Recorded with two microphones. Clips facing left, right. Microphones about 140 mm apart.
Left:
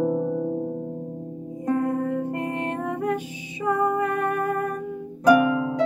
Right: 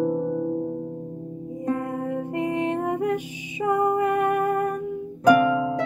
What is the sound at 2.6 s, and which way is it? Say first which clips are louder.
Music: right 3 dB; 15° right (ahead or behind).